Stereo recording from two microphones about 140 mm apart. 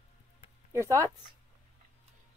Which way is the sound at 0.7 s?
20° right (ahead or behind).